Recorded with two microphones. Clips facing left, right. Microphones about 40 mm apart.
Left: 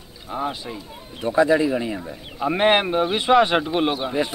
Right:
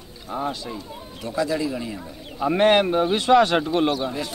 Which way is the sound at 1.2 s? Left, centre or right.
Left.